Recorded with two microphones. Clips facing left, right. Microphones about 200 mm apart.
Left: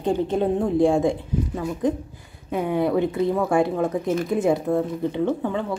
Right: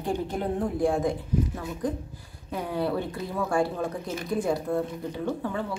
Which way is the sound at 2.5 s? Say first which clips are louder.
Left 6 dB; 20° left (ahead or behind).